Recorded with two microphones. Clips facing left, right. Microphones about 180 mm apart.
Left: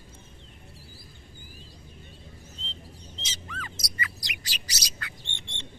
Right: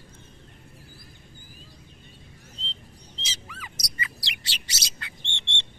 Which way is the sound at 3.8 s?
25° right (ahead or behind).